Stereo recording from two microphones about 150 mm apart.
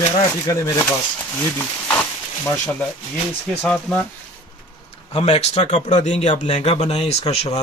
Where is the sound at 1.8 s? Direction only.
10° left (ahead or behind).